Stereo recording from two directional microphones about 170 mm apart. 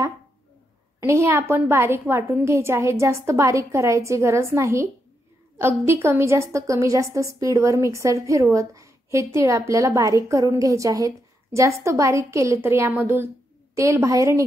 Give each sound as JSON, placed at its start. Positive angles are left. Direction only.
{"t": 1.0, "sound": "a woman's voice", "side_deg": -15}